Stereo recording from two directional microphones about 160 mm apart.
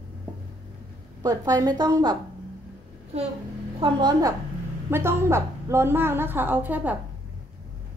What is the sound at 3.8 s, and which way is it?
A woman's voice, 25° right (ahead or behind).